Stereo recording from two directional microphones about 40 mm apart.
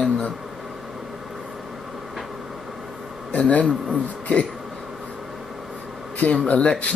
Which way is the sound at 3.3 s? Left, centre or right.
Left.